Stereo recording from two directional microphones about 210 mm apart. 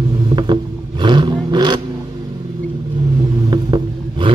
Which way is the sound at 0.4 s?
20° right (ahead or behind).